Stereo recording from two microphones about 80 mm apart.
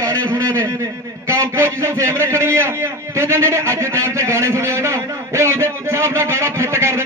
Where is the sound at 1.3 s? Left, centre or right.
Right.